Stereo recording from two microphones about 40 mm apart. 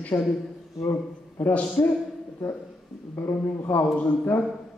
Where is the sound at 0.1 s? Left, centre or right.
Left.